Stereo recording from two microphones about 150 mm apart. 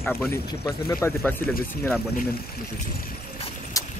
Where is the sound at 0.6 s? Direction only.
20° left (ahead or behind).